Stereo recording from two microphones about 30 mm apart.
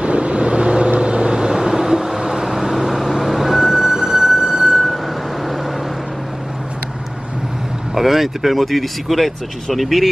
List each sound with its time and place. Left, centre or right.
0.0 s vehicle: right; by 4.7 s centre
7.9 s speech: centre